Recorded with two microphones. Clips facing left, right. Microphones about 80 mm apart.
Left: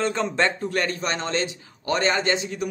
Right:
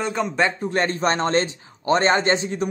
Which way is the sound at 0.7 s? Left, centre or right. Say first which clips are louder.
Right 4 dB; right.